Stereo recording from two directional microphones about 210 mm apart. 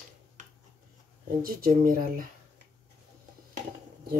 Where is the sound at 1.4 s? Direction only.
45° right (ahead or behind).